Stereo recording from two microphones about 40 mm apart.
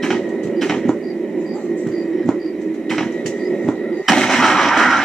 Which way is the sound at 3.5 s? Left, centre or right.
Centre.